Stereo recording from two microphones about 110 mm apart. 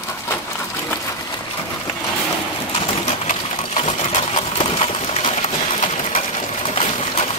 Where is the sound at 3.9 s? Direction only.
60° left (ahead or behind).